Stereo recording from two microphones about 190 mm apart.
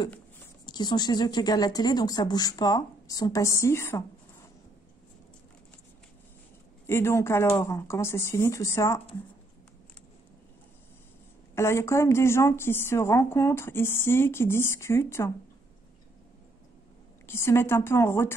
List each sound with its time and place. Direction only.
0.7 s speech: 20° left (ahead or behind)
6.9 s a woman's voice: 15° left (ahead or behind)
11.5 s a woman's voice: 15° left (ahead or behind)
17.3 s a woman's voice: 15° left (ahead or behind)